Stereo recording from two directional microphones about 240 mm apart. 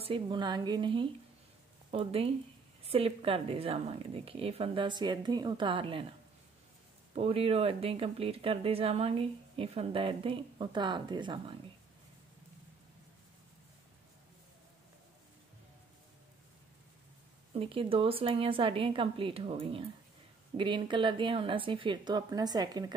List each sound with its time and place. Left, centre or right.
0.0 s speech: right
7.2 s speech: right
17.6 s speech: right